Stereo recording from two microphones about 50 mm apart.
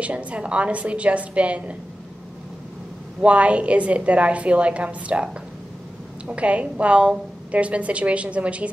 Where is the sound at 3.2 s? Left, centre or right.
Right.